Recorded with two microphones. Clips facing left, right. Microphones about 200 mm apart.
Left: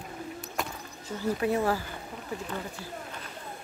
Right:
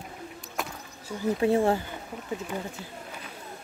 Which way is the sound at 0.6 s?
Centre (ahead or behind).